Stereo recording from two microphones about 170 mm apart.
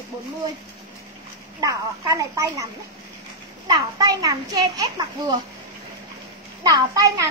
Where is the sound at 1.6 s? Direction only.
20° right (ahead or behind).